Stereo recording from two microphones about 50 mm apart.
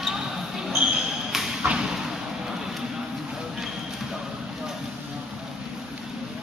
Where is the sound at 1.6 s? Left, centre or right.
Centre.